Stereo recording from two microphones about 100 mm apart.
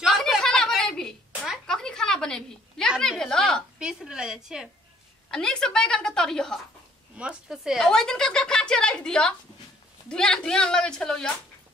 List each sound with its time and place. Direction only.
0.0 s a sound: centre (ahead or behind)
3.8 s a woman's voice: 5° right (ahead or behind)
5.3 s speech: 5° left (ahead or behind)
7.2 s a woman's voice: 10° right (ahead or behind)
7.8 s speech: 5° left (ahead or behind)